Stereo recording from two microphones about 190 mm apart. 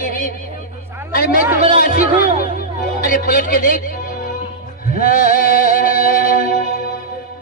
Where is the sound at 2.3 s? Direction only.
40° right (ahead or behind).